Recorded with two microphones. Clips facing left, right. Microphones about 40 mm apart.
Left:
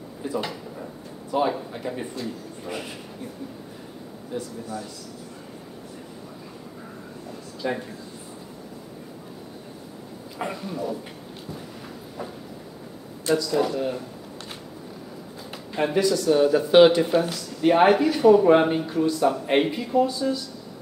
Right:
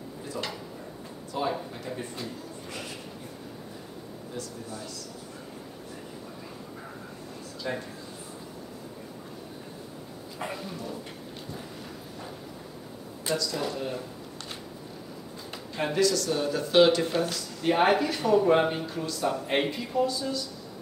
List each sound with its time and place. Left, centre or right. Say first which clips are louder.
0.2 s a sound: left 7 dB; centre
1.3 s speech: left 6 dB; left
7.6 s speech: left 5 dB; left
10.4 s speech: left 6 dB; centre
13.4 s speech: left 8 dB; centre
15.5 s speech: left 5 dB; centre
17.0 s speech: left 5 dB; centre